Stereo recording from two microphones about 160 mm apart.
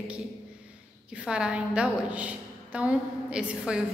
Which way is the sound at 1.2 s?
5° right (ahead or behind).